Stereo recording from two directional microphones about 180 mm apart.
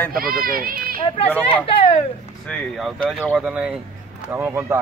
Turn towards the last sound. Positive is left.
turn(degrees=-15)  # may be behind; listen again after turning